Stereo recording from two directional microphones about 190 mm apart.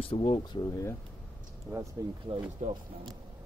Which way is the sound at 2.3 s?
30° right (ahead or behind).